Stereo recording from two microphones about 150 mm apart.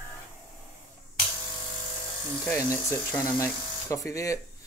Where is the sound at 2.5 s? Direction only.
20° left (ahead or behind).